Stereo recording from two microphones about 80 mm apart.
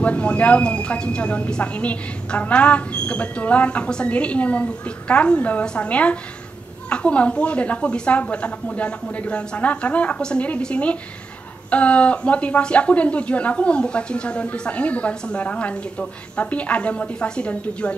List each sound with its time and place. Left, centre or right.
0.0 s speech: centre